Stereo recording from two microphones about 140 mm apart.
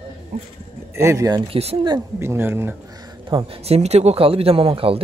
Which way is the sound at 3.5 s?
45° right (ahead or behind).